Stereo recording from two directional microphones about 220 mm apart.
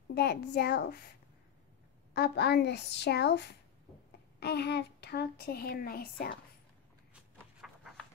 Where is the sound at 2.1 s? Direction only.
50° left (ahead or behind).